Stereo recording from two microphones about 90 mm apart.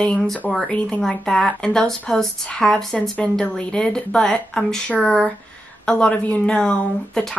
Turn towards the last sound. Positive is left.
turn(degrees=10)  # may be behind; listen again after turning